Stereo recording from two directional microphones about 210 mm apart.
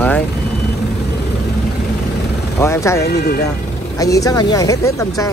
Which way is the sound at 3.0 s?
50° left (ahead or behind).